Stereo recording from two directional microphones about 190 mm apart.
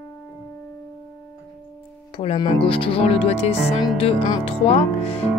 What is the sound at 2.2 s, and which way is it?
Speech, 30° left (ahead or behind).